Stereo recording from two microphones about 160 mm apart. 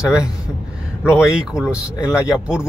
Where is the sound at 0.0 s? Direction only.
5° right (ahead or behind).